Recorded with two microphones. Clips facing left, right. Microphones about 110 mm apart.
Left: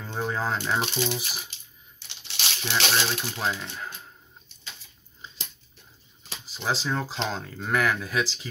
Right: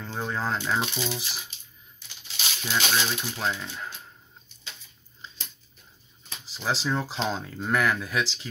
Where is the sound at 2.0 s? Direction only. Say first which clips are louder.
Left 1 dB; 75° left (ahead or behind).